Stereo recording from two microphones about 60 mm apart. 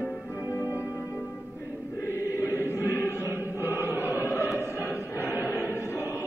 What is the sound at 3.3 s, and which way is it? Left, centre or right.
Music, right.